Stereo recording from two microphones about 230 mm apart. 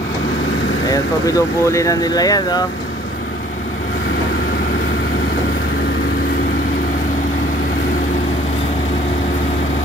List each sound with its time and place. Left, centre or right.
0.8 s speech: centre